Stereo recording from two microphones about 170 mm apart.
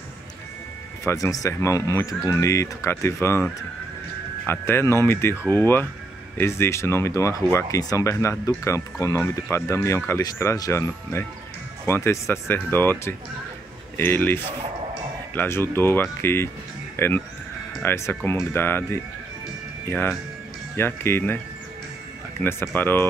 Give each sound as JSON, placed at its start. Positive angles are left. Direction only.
{"t": 1.0, "sound": "speech", "side_deg": 20}
{"t": 4.5, "sound": "speech", "side_deg": 15}
{"t": 22.4, "sound": "speech", "side_deg": 15}